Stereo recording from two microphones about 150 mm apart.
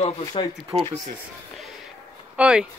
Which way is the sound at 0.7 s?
25° right (ahead or behind).